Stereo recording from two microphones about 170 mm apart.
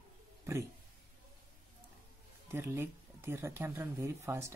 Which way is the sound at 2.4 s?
15° right (ahead or behind).